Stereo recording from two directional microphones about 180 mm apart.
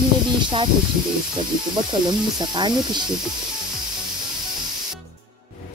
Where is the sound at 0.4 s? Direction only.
25° right (ahead or behind).